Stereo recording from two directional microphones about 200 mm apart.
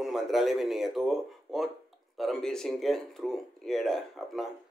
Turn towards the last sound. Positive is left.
turn(degrees=0)  # may be behind; listen again after turning